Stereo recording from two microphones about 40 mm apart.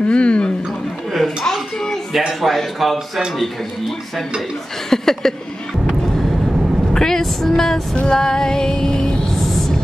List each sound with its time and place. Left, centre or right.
0.0 s a sound: left
1.1 s a sound: centre
2.1 s speech: centre
4.8 s speech: centre
6.9 s vehicle: centre
7.9 s music: left
8.2 s female singing: centre
9.4 s music: centre